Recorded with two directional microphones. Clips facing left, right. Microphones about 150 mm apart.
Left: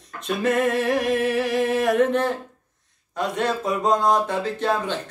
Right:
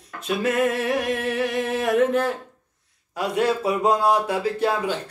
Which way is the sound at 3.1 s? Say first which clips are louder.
Right 2 dB; 10° right (ahead or behind).